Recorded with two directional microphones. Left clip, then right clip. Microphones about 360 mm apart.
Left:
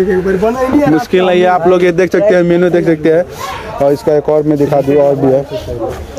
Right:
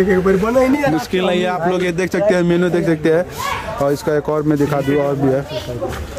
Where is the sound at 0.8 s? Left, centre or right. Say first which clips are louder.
Left 7 dB; centre.